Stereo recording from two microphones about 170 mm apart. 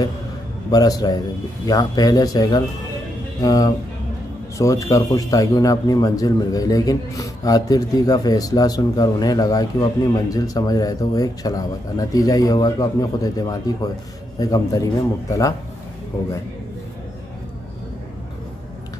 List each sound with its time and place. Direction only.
0.7 s speech: 20° left (ahead or behind)